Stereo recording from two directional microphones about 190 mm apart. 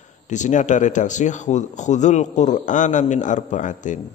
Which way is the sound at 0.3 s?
40° left (ahead or behind).